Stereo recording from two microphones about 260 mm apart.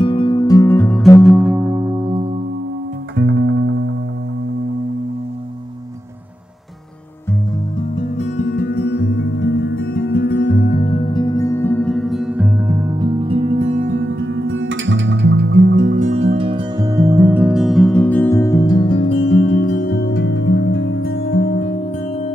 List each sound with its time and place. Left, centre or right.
0.0 s music: centre
1.2 s music: centre
3.2 s music: right
8.2 s music: left
10.5 s music: left; by 13.9 s right
13.9 s music: right; by 19.5 s left
19.5 s music: left